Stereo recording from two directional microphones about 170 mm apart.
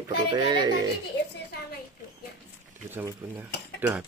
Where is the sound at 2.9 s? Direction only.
10° right (ahead or behind).